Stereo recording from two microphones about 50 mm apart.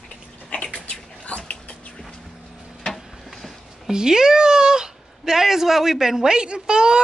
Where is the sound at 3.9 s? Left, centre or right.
Centre.